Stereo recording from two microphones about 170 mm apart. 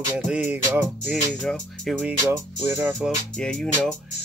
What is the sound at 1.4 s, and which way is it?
Speech, 5° left (ahead or behind).